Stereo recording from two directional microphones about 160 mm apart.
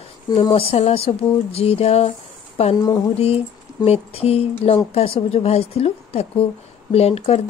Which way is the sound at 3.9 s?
40° left (ahead or behind).